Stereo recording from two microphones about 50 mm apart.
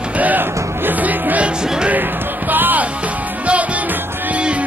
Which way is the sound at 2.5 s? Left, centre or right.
Right.